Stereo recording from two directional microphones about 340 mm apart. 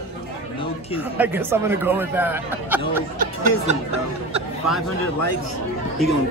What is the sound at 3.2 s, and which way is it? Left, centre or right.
Speech, right.